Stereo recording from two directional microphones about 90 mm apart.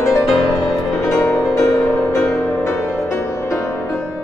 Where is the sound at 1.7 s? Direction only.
35° left (ahead or behind).